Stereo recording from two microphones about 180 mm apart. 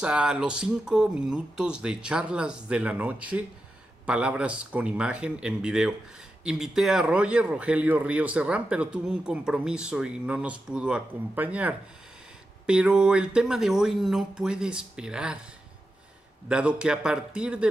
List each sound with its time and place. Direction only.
0.0 s speech: 5° right (ahead or behind)
16.4 s speech: 5° right (ahead or behind)